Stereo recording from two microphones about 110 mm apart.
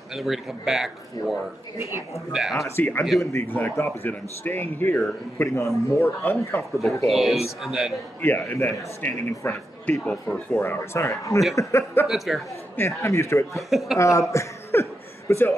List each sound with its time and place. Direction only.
0.1 s speech: 5° right (ahead or behind)
2.6 s a man's voice: 20° left (ahead or behind)
7.1 s speech: centre (ahead or behind)
8.2 s a man's voice: 20° left (ahead or behind)
10.0 s speech: 10° left (ahead or behind)
10.6 s a man's voice: 25° left (ahead or behind)
12.1 s speech: centre (ahead or behind)
12.7 s a man's voice: 25° left (ahead or behind)
13.6 s speech: centre (ahead or behind)
13.9 s a man's voice: 30° left (ahead or behind)
14.3 s chuckle: 25° left (ahead or behind)